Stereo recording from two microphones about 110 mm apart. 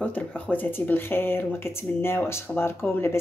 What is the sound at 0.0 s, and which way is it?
Speech, 15° left (ahead or behind).